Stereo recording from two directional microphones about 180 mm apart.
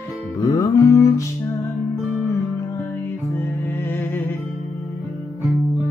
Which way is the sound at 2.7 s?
15° left (ahead or behind).